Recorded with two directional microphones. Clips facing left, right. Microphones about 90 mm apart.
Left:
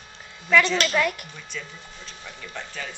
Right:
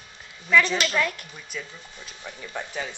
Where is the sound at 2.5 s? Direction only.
20° right (ahead or behind).